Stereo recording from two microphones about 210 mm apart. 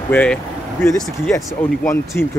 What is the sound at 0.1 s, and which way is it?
Speech, 5° left (ahead or behind).